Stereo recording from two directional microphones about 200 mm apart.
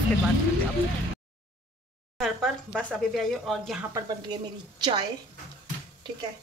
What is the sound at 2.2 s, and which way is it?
Speech, centre (ahead or behind).